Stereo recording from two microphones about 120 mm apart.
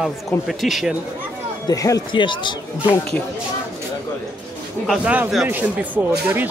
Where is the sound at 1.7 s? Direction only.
30° left (ahead or behind).